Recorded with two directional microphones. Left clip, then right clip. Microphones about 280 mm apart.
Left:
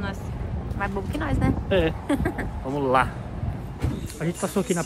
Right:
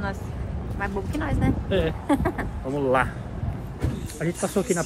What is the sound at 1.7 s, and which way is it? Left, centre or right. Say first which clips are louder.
Speech: left 3 dB; left.